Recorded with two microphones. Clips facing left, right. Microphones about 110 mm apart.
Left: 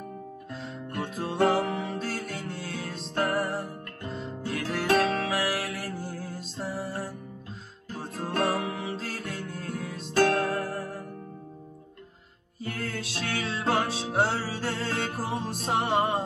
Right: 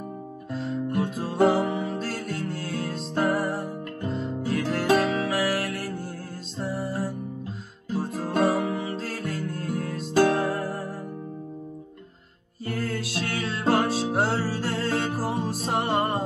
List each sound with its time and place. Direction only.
0.5 s music: centre (ahead or behind)
10.1 s music: 20° right (ahead or behind)
10.6 s music: centre (ahead or behind)
12.6 s music: centre (ahead or behind)